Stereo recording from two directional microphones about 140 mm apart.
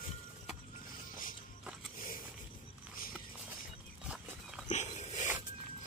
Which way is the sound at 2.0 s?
90° left.